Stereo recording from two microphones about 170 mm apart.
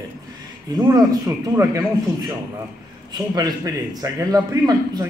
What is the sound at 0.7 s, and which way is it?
A man's voice, 20° right (ahead or behind).